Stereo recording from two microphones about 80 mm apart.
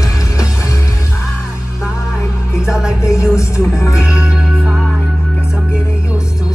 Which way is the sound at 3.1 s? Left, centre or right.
Left.